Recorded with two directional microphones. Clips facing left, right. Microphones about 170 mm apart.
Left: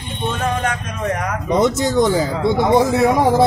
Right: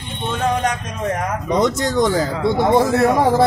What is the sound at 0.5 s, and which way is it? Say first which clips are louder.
Speech: right 1 dB; 20° right (ahead or behind).